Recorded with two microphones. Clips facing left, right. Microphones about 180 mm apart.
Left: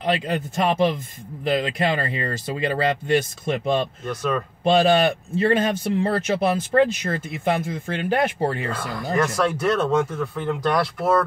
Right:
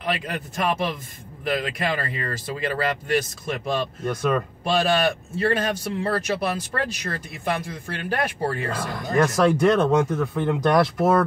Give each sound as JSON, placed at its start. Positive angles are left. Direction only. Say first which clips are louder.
{"t": 0.0, "sound": "speech", "louder": "left 5 dB", "side_deg": 25}
{"t": 9.2, "sound": "speech", "louder": "right 4 dB", "side_deg": -15}